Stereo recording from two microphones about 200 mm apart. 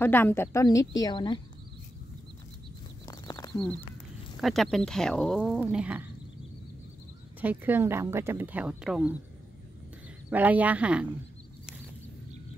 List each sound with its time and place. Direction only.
0.0 s a woman's voice: 10° left (ahead or behind)
3.1 s a sound: 20° left (ahead or behind)
3.5 s speech: 5° left (ahead or behind)
7.3 s speech: 10° right (ahead or behind)
10.3 s speech: 10° right (ahead or behind)